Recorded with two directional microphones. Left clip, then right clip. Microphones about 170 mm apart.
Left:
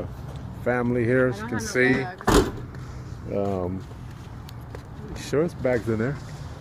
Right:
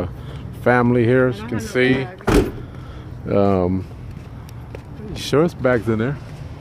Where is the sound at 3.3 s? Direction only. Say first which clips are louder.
Right 10 dB; 55° right (ahead or behind).